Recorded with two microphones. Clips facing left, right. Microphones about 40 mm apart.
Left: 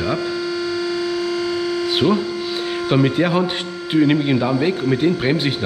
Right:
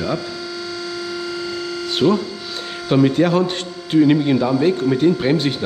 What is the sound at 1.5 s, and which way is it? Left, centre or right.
Hum, centre.